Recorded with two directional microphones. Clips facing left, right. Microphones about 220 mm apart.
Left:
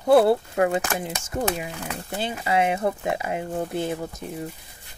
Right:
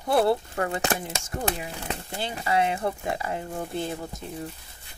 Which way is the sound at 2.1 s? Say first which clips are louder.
Left 2 dB; 20° left (ahead or behind).